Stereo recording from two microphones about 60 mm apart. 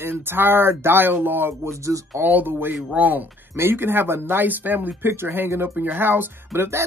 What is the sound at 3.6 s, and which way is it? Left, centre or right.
Speech, right.